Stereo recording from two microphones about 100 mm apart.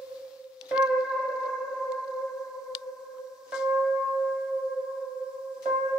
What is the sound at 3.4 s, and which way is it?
Music, 10° right (ahead or behind).